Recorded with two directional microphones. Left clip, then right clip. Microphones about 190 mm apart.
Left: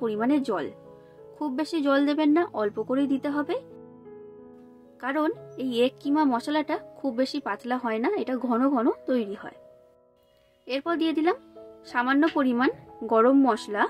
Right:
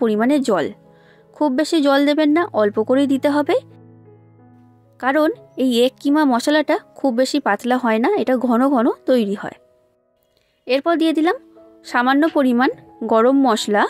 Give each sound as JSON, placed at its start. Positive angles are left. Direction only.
{"t": 0.0, "sound": "speech", "side_deg": -45}
{"t": 5.0, "sound": "speech", "side_deg": -45}
{"t": 10.6, "sound": "speech", "side_deg": -45}